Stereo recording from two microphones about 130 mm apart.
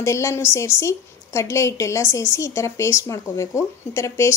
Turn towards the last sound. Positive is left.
turn(degrees=20)  # may be behind; listen again after turning